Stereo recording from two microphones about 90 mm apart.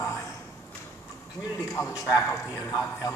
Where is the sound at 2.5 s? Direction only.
35° left (ahead or behind).